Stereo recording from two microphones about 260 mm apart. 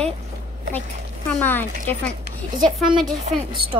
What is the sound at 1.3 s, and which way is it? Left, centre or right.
Speech, centre.